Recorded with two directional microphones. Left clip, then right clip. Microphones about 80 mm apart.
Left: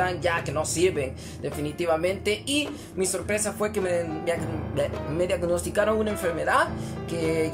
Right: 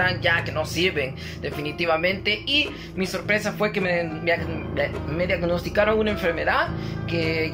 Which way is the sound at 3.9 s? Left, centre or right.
Left.